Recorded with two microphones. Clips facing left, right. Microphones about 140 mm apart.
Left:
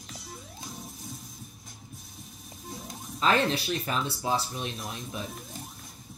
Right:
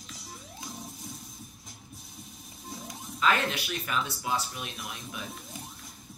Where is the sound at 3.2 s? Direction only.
30° left (ahead or behind).